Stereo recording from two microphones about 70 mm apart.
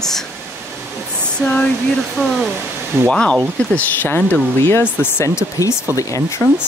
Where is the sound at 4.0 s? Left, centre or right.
Left.